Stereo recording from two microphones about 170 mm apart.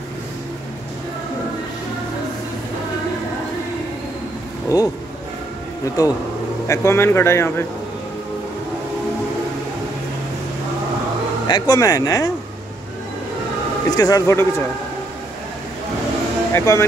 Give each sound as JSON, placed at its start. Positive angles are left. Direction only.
{"t": 4.6, "sound": "speech", "side_deg": 20}
{"t": 6.0, "sound": "speech", "side_deg": 20}
{"t": 11.4, "sound": "speech", "side_deg": 25}
{"t": 13.8, "sound": "speech", "side_deg": 20}
{"t": 16.5, "sound": "speech", "side_deg": 20}